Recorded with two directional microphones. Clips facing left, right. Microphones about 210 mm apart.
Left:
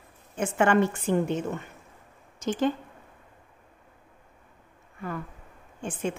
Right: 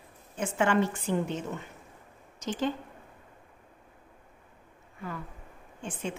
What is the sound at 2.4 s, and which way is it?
Speech, 50° left (ahead or behind).